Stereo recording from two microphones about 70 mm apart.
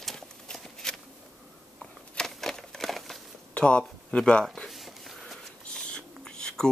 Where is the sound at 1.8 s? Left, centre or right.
Centre.